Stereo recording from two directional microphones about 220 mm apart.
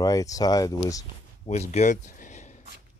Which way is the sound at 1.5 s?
30° left (ahead or behind).